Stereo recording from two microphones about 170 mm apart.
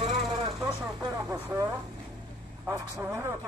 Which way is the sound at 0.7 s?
5° right (ahead or behind).